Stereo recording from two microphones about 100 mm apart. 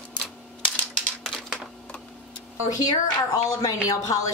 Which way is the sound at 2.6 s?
40° left (ahead or behind).